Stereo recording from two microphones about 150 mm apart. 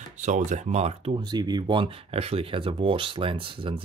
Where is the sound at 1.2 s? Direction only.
30° right (ahead or behind).